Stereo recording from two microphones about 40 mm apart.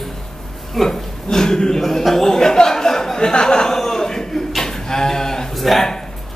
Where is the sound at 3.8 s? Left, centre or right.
Centre.